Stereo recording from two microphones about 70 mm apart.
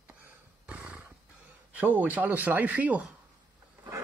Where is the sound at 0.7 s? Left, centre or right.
Centre.